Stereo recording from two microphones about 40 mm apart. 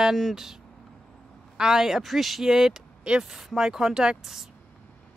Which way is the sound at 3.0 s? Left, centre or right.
Right.